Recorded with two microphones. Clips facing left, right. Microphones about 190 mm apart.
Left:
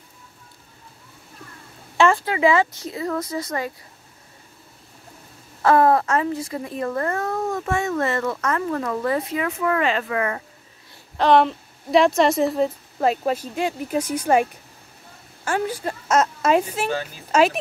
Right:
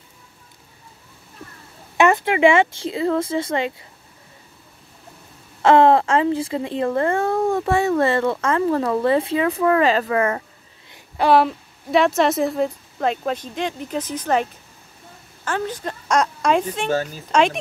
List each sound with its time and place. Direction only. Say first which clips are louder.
2.0 s speech: right 2 dB; 20° right (ahead or behind)
5.6 s speech: right 3 dB; 25° right (ahead or behind)
10.9 s a woman's voice: even; 10° right (ahead or behind)